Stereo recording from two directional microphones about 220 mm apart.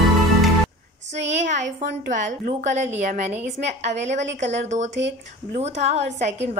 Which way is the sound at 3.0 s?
30° right (ahead or behind).